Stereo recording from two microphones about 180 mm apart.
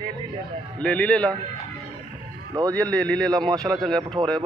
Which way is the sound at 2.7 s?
5° left (ahead or behind).